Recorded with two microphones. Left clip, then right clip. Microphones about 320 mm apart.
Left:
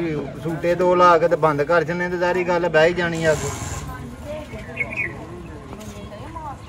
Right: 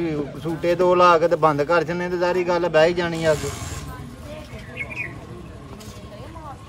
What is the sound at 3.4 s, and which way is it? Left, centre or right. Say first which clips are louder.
Speech: left 2 dB; centre.